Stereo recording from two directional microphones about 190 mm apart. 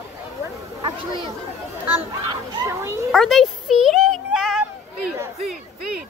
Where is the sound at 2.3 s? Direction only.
20° right (ahead or behind).